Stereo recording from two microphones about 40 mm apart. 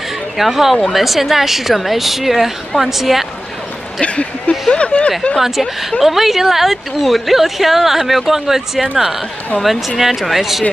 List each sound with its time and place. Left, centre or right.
0.4 s speech: centre
4.0 s speech: left
5.4 s speech: centre